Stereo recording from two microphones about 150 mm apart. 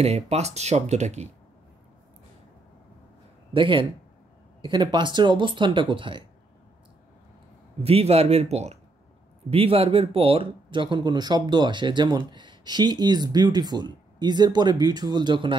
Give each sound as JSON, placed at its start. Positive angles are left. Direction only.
{"t": 0.0, "sound": "speech", "side_deg": -45}
{"t": 3.5, "sound": "speech", "side_deg": -35}
{"t": 7.8, "sound": "speech", "side_deg": -40}